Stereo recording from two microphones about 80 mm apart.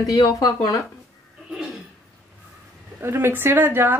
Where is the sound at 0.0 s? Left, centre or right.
Left.